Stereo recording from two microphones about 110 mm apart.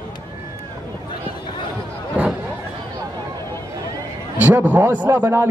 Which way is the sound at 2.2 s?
10° right (ahead or behind).